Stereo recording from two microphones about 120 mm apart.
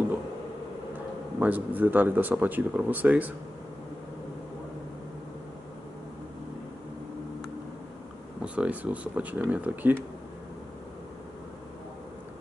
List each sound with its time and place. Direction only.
1.4 s speech: 15° right (ahead or behind)
8.5 s speech: 10° right (ahead or behind)